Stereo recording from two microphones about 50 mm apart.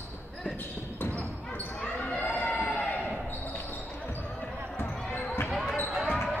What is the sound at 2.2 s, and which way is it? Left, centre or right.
Run, left.